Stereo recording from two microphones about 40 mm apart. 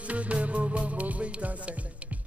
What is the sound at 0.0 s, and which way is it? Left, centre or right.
Music, right.